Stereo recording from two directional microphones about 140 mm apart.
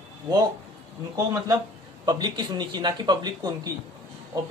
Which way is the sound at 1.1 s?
25° right (ahead or behind).